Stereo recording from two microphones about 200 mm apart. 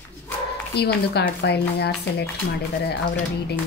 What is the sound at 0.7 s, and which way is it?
Speech, 55° left (ahead or behind).